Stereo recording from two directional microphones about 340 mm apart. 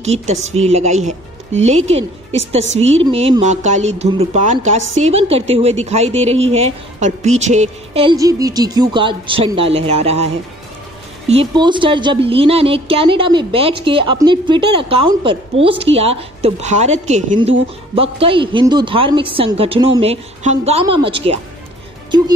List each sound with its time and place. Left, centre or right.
0.0 s a woman's voice: centre